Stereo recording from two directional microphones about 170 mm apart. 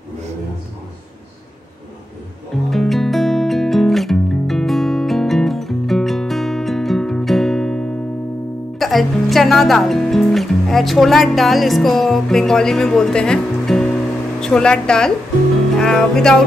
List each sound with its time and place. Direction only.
2.7 s music: centre (ahead or behind)
8.7 s speech: centre (ahead or behind)